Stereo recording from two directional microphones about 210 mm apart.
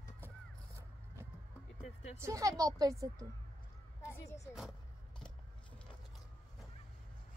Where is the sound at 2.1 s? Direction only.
15° right (ahead or behind).